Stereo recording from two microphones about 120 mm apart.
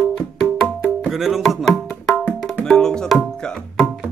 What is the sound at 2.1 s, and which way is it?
Tabla, centre (ahead or behind).